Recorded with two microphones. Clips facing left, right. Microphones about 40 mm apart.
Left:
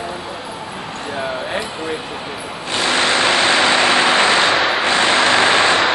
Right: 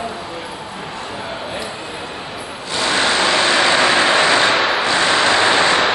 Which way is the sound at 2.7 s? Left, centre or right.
Left.